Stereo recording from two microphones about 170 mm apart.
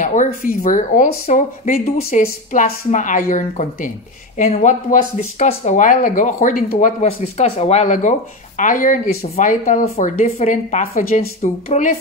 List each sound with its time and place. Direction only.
0.0 s speech: 50° left (ahead or behind)
2.0 s a woman's voice: 40° left (ahead or behind)
7.1 s speech: 35° left (ahead or behind)